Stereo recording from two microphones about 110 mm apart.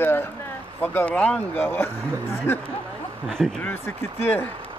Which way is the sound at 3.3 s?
5° left (ahead or behind).